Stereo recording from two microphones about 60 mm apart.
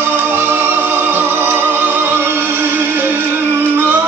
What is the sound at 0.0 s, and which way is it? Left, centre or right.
Music, right.